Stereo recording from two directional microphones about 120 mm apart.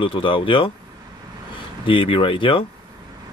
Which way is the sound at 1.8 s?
45° left (ahead or behind).